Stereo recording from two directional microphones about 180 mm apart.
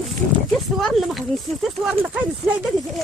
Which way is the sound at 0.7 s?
Centre (ahead or behind).